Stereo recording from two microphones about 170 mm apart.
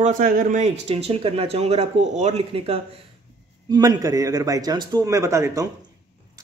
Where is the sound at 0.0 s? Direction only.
50° right (ahead or behind); by 2.8 s 35° right (ahead or behind).